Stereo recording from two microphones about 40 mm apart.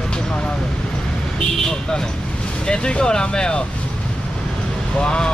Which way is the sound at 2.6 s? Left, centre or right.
Left.